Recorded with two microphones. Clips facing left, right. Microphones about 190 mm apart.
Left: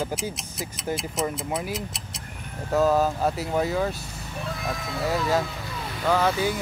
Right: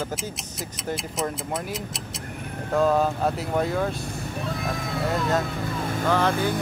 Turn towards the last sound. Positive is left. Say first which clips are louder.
# even
turn(degrees=-55)  # may be behind; listen again after turning